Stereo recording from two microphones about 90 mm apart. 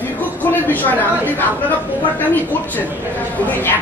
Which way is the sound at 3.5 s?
20° left (ahead or behind).